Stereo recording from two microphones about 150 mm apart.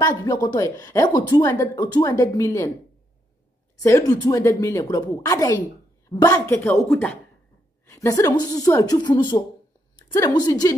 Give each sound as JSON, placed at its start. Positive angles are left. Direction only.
{"t": 0.2, "sound": "speech", "side_deg": 25}
{"t": 3.8, "sound": "speech", "side_deg": 20}
{"t": 7.9, "sound": "speech", "side_deg": 20}